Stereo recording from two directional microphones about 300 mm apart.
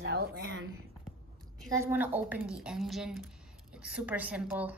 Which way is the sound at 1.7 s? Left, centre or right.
Centre.